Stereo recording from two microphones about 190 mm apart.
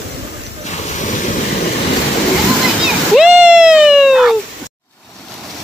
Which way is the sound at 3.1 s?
5° right (ahead or behind).